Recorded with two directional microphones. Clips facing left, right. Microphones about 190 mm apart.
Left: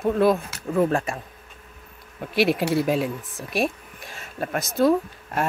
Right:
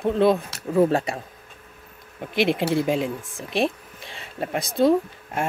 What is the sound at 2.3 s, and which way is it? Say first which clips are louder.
Speech: even; 20° right (ahead or behind).